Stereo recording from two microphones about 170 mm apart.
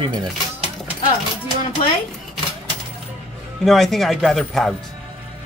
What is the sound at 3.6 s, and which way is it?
Speech, centre (ahead or behind).